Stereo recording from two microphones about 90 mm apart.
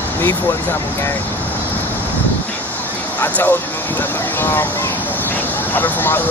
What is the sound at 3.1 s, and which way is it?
Speech, 20° left (ahead or behind).